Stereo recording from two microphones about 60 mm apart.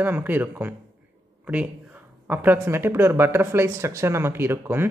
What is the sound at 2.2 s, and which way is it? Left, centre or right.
Speech, right.